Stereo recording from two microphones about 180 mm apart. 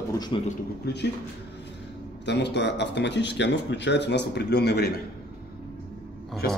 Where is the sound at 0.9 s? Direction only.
65° left (ahead or behind).